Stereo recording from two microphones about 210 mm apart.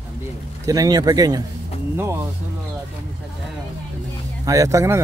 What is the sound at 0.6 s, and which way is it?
Speech, 15° right (ahead or behind).